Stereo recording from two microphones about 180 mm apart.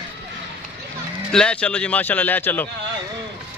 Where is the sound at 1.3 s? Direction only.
5° left (ahead or behind).